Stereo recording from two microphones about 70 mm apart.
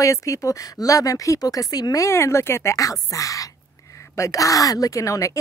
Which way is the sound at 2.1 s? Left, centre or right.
Left.